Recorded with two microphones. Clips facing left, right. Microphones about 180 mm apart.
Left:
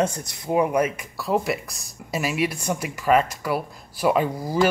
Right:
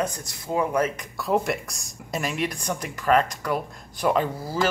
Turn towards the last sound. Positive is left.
turn(degrees=15)  # may be behind; listen again after turning